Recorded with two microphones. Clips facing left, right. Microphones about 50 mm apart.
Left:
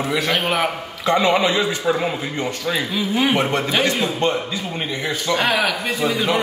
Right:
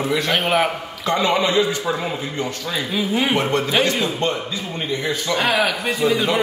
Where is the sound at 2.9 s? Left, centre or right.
Centre.